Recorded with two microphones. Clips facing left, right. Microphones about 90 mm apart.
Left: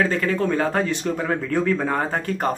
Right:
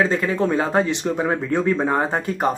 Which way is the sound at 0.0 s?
20° right (ahead or behind).